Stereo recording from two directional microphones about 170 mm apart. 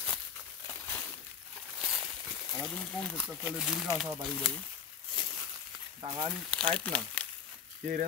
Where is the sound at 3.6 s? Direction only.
Centre (ahead or behind).